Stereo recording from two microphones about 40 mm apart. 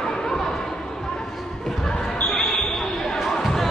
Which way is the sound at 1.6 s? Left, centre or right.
Centre.